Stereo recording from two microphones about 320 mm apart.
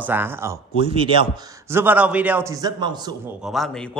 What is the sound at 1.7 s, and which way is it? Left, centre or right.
A man's voice, centre.